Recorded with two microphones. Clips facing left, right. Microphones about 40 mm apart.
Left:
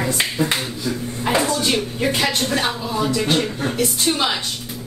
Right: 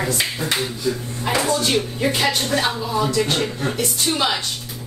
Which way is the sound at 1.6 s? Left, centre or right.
Centre.